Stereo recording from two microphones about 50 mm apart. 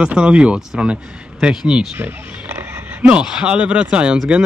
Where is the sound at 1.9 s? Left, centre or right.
Right.